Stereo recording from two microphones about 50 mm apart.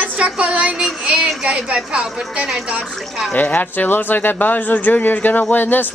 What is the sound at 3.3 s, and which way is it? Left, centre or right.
Speech, left.